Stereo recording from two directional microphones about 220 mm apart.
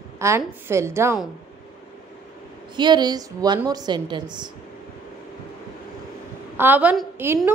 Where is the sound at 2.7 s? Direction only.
20° right (ahead or behind).